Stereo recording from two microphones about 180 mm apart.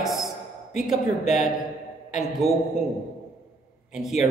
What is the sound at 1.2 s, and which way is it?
Speech, 40° left (ahead or behind).